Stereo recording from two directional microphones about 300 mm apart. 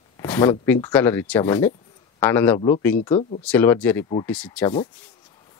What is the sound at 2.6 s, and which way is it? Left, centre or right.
Speech, centre.